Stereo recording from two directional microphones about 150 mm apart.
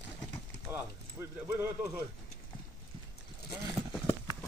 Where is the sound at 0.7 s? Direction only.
15° right (ahead or behind).